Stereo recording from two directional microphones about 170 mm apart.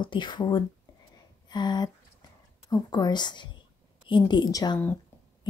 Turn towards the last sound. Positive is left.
turn(degrees=25)  # may be behind; listen again after turning